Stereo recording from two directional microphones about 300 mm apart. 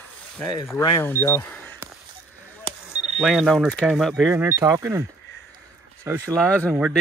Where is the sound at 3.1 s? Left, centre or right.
Centre.